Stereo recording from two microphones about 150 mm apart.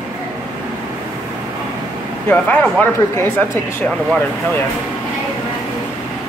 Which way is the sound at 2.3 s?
10° left (ahead or behind).